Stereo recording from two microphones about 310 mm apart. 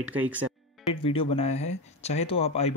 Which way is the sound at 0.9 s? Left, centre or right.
Centre.